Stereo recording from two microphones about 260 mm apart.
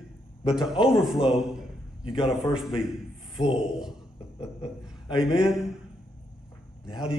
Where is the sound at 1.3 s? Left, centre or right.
Centre.